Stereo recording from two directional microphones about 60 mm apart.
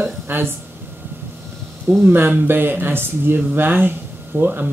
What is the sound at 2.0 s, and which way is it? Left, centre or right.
Speech, right.